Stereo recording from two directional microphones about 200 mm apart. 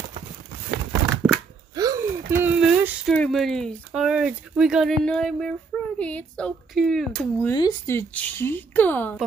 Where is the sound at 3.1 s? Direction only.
Centre (ahead or behind).